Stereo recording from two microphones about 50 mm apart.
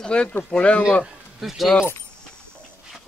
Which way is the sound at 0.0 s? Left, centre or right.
Centre.